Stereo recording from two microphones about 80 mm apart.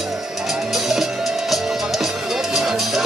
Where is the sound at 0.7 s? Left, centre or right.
Centre.